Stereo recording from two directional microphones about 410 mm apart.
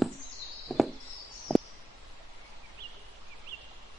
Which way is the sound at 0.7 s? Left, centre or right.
Centre.